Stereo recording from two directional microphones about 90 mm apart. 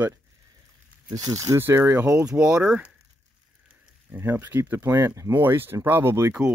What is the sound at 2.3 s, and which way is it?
Speech, 10° right (ahead or behind).